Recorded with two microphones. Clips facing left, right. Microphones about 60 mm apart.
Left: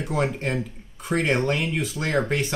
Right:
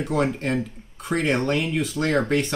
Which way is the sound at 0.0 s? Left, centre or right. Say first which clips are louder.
Right 2 dB; centre.